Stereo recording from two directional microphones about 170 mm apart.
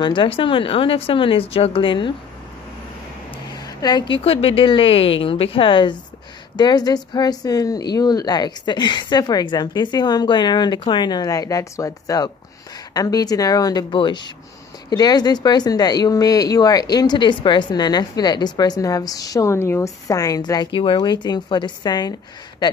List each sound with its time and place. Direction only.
0.0 s a woman's voice: 30° left (ahead or behind)
3.5 s a woman's voice: 25° left (ahead or behind)